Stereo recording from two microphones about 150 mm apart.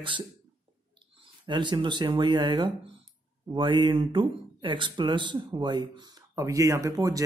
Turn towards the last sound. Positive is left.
turn(degrees=-20)  # may be behind; listen again after turning